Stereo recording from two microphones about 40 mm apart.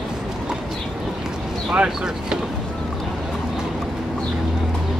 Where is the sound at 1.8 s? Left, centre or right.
Centre.